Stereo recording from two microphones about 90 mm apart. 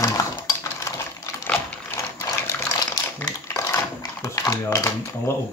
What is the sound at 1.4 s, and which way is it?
Sewing machine, 20° left (ahead or behind).